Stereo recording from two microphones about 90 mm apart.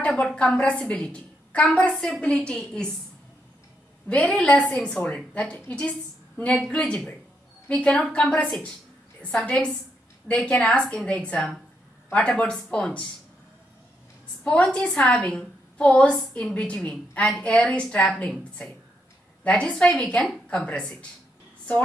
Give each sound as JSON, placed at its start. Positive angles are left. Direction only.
{"t": 0.0, "sound": "a woman's voice", "side_deg": 5}
{"t": 4.1, "sound": "a woman's voice", "side_deg": 15}
{"t": 7.7, "sound": "a woman's voice", "side_deg": 15}
{"t": 14.4, "sound": "a woman's voice", "side_deg": 10}
{"t": 19.4, "sound": "a woman's voice", "side_deg": 10}